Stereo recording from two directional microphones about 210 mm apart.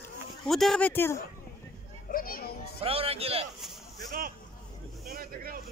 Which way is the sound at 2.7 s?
25° right (ahead or behind).